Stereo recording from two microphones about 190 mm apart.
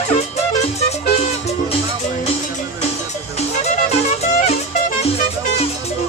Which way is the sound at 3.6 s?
35° left (ahead or behind).